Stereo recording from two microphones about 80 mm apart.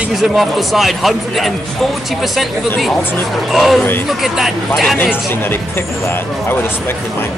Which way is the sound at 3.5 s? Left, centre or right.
Centre.